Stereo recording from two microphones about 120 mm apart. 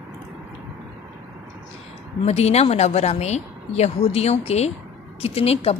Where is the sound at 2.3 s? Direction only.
60° left (ahead or behind).